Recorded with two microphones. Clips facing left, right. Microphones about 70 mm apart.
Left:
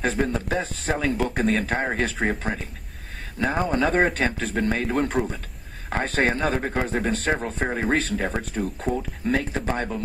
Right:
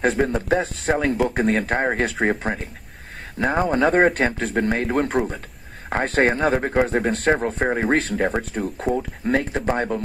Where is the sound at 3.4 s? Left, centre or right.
Right.